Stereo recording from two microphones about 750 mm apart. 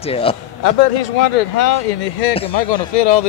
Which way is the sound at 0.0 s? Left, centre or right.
Centre.